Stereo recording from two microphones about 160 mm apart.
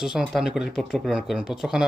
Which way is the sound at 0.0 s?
5° right (ahead or behind).